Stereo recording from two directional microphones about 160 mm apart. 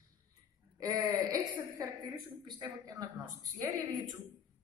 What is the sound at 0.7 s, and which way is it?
A woman's voice, 25° right (ahead or behind).